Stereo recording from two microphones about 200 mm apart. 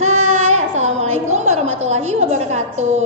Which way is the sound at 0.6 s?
35° right (ahead or behind).